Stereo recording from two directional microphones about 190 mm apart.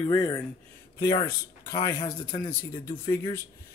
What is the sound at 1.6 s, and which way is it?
Speech, 20° left (ahead or behind).